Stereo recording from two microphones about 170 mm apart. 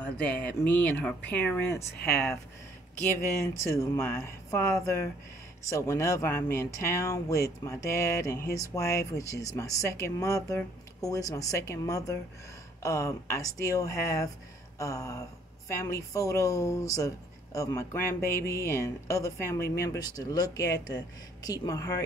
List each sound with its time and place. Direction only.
0.0 s speech: 5° left (ahead or behind)
3.2 s speech: 15° left (ahead or behind)